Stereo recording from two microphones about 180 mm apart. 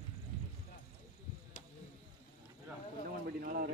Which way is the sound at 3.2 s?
55° right (ahead or behind).